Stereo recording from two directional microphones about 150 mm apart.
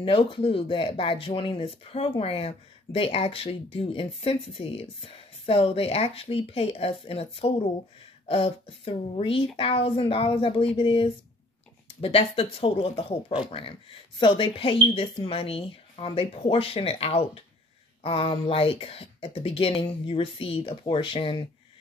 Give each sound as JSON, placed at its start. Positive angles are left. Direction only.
{"t": 0.0, "sound": "speech", "side_deg": 35}